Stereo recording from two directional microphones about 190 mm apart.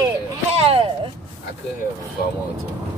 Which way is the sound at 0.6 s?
30° right (ahead or behind).